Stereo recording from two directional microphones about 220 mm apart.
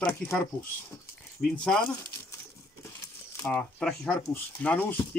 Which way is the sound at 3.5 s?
Centre (ahead or behind).